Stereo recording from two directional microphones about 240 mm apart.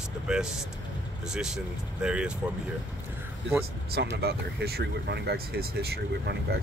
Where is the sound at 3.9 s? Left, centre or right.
Right.